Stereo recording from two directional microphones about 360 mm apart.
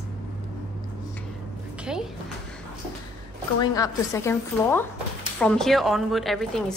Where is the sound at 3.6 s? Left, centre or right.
Centre.